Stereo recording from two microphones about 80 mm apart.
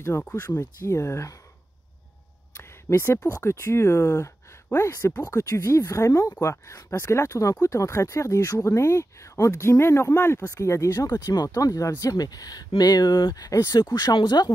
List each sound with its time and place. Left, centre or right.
0.1 s speech: left
2.5 s a sound: left
3.3 s speech: left
13.9 s speech: left